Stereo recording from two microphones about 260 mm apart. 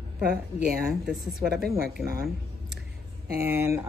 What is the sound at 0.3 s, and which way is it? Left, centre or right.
Speech, right.